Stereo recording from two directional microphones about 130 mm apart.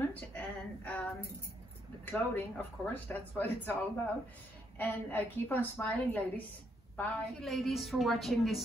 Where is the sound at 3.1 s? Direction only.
15° left (ahead or behind).